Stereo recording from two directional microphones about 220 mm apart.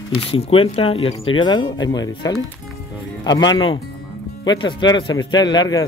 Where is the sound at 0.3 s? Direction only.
25° left (ahead or behind).